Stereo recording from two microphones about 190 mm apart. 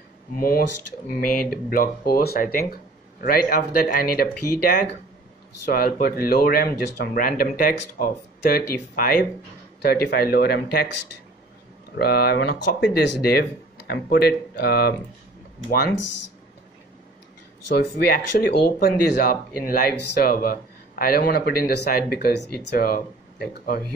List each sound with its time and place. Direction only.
0.4 s speech: 50° left (ahead or behind)
12.0 s speech: 55° left (ahead or behind)
17.7 s speech: 55° left (ahead or behind)